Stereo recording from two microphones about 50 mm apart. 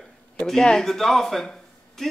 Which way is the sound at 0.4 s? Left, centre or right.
Centre.